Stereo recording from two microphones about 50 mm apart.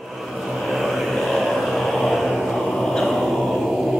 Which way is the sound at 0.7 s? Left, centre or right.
Centre.